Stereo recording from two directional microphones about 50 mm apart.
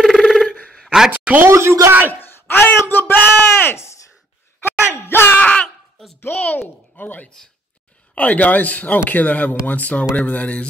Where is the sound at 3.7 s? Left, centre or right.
Left.